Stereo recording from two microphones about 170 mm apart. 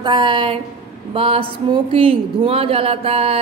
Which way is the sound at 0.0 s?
30° right (ahead or behind).